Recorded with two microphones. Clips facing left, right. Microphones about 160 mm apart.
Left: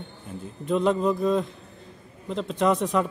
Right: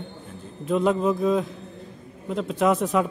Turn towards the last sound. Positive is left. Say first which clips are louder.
# right 1 dB
turn(degrees=-5)  # may be behind; listen again after turning